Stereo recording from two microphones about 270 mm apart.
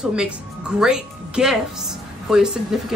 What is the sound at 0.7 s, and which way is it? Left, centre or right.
A woman's voice, centre.